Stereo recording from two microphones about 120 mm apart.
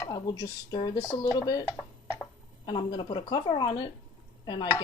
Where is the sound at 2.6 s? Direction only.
40° left (ahead or behind).